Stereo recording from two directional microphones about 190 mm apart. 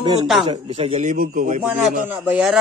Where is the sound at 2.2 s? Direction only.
5° right (ahead or behind).